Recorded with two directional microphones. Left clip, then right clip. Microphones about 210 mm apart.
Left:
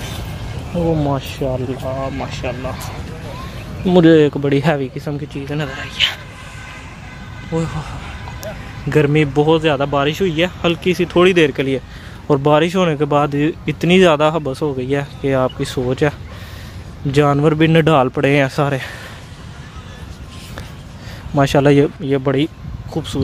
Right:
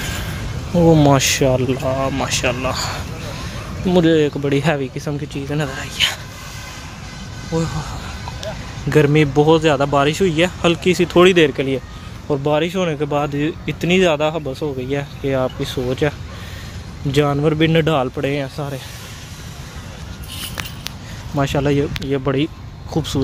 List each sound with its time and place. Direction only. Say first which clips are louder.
0.9 s speech: right 7 dB; 25° right (ahead or behind)
3.8 s speech: left 4 dB; 15° left (ahead or behind); by 6.1 s 5° right (ahead or behind)
7.5 s speech: even; 5° left (ahead or behind)
8.9 s speech: even; centre (ahead or behind); by 18.8 s 30° left (ahead or behind)
21.4 s speech: left 6 dB; 20° left (ahead or behind)
22.2 s speech: left 2 dB; 10° left (ahead or behind)
22.9 s speech: right 1 dB; 5° right (ahead or behind)